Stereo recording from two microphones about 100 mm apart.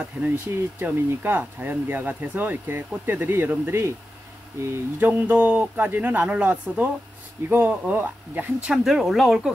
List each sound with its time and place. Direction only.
0.2 s speech: 5° right (ahead or behind)
0.7 s speech: 20° right (ahead or behind)
8.6 s speech: 5° right (ahead or behind)